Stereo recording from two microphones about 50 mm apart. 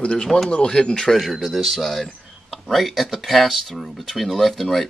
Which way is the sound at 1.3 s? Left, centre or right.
Centre.